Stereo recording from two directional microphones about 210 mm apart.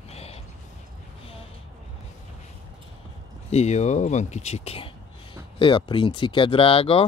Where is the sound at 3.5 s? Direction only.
30° left (ahead or behind).